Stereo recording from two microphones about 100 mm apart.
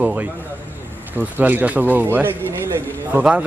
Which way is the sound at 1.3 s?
20° right (ahead or behind).